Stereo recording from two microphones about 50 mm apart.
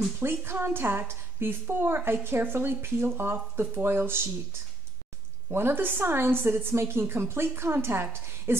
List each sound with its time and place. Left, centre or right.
0.2 s a woman's voice: right
5.5 s a woman's voice: right